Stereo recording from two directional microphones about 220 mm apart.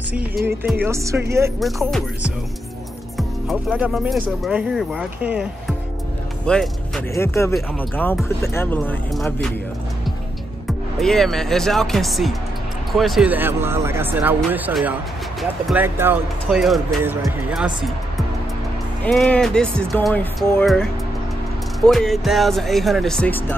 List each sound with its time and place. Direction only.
0.5 s speech: 10° right (ahead or behind)
3.2 s speech: centre (ahead or behind)
11.0 s speech: centre (ahead or behind)
19.0 s speech: 5° left (ahead or behind)